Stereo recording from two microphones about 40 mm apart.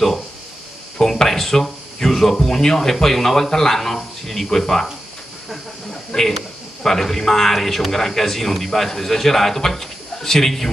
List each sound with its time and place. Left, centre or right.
0.9 s speech: centre
6.1 s a man's voice: centre